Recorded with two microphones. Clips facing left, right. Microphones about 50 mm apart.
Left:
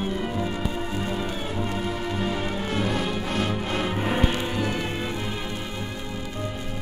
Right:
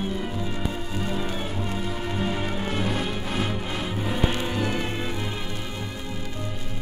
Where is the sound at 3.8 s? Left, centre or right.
Left.